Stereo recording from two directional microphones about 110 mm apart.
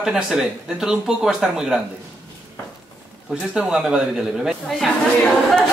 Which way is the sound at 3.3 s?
10° right (ahead or behind).